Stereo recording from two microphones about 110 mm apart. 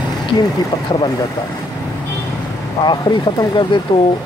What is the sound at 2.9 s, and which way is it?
Speech, 45° left (ahead or behind).